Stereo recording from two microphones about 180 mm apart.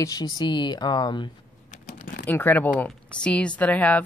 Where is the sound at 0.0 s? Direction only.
20° left (ahead or behind).